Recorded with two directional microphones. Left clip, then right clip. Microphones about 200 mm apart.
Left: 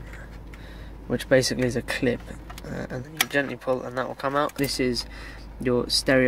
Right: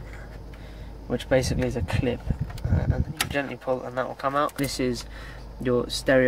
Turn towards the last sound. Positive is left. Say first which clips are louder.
# even
turn(degrees=10)  # may be behind; listen again after turning